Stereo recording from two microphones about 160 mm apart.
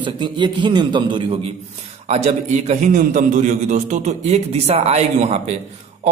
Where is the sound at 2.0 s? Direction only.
40° right (ahead or behind).